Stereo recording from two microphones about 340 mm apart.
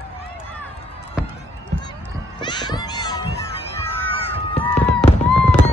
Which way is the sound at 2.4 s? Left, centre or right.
Centre.